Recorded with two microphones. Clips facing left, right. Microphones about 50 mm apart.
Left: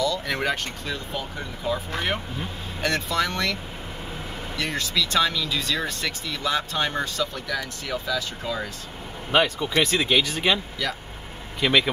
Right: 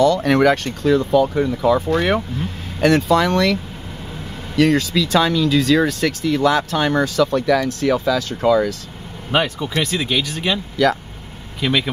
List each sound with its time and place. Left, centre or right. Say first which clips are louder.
0.0 s speech: right 11 dB; right
2.8 s speech: right 10 dB; right
4.6 s speech: right 11 dB; right
9.3 s speech: right 2 dB; centre
9.8 s speech: even; centre
11.6 s speech: right 1 dB; centre